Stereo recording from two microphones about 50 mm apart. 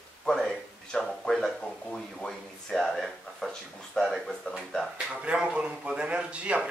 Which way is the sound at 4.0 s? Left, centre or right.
Centre.